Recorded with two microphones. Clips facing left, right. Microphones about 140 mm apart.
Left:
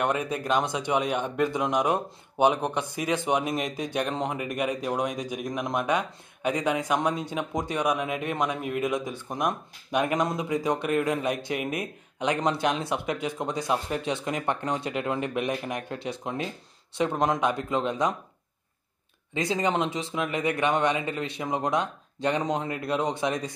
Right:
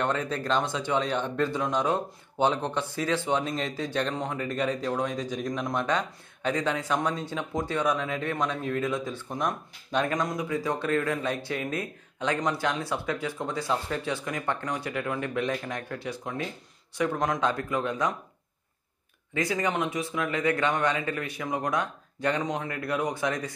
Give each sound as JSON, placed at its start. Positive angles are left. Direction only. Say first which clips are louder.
{"t": 0.0, "sound": "a man's voice", "louder": "left 1 dB", "side_deg": 15}
{"t": 19.3, "sound": "a man's voice", "louder": "left 2 dB", "side_deg": 20}